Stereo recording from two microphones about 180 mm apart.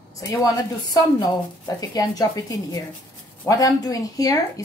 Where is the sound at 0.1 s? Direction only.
20° left (ahead or behind).